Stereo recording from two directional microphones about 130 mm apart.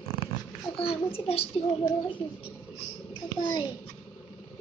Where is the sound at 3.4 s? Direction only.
40° left (ahead or behind).